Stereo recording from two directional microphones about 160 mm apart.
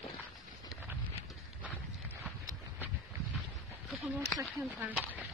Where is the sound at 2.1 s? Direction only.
20° right (ahead or behind).